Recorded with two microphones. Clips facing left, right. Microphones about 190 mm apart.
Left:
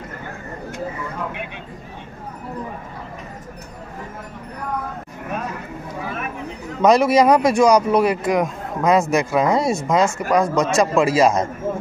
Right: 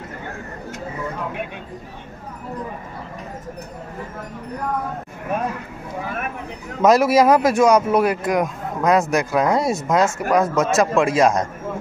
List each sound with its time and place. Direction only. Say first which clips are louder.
6.8 s speech: even; 5° right (ahead or behind)